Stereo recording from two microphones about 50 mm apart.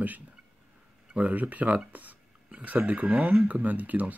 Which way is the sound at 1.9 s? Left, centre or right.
Right.